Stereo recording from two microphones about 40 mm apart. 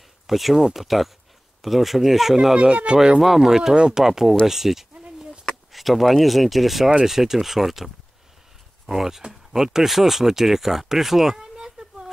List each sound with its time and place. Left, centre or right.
0.3 s speech: centre
2.5 s speech: right; by 4.4 s centre
4.5 s a sound: centre
5.7 s speech: centre